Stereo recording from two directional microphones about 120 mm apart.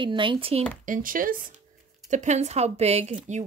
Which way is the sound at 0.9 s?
90° right.